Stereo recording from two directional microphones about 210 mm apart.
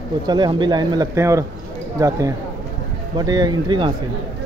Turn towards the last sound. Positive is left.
turn(degrees=-20)  # may be behind; listen again after turning